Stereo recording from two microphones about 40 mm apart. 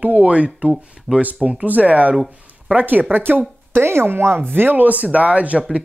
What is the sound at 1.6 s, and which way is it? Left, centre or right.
Speech, right.